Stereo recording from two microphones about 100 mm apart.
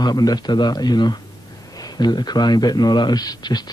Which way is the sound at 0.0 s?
40° left (ahead or behind).